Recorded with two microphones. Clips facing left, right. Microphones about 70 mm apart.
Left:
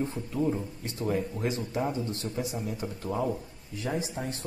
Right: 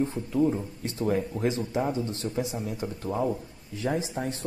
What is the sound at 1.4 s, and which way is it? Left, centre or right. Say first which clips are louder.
Speech: right 3 dB; right.